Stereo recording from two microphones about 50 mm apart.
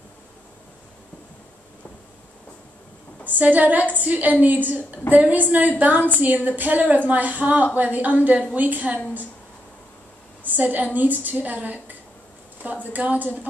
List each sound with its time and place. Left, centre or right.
3.3 s a woman's voice: right
10.4 s a sound: right
11.0 s a woman's voice: right
12.9 s a woman's voice: right